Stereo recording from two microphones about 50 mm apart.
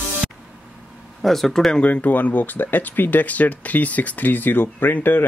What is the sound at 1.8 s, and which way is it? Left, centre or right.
Speech, left.